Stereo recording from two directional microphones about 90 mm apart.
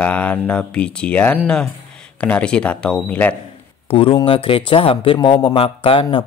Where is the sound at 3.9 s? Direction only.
85° left.